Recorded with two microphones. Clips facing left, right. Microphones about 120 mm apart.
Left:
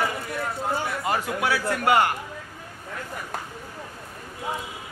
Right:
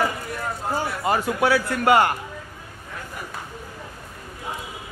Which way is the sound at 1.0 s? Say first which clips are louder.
Right 6 dB; 35° right (ahead or behind).